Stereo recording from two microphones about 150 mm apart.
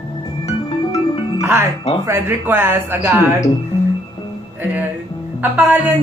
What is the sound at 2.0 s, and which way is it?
Speech, 15° right (ahead or behind).